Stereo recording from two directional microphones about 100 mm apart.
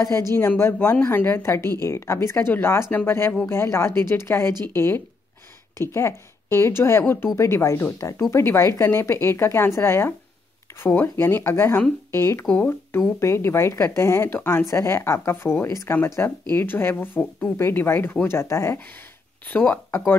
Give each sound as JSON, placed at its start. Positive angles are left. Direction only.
{"t": 0.3, "sound": "speech", "side_deg": 25}
{"t": 19.4, "sound": "speech", "side_deg": 15}